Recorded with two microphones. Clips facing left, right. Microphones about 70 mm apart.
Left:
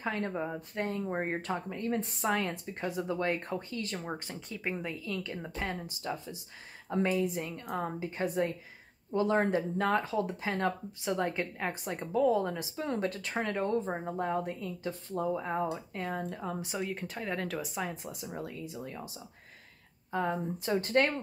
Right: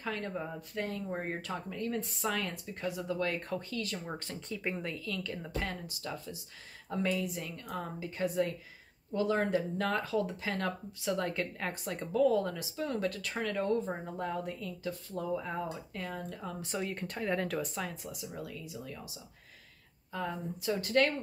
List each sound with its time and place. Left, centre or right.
0.0 s speech: left
4.1 s speech: centre
5.0 s speech: left
16.2 s speech: left
16.6 s speech: centre
17.8 s speech: left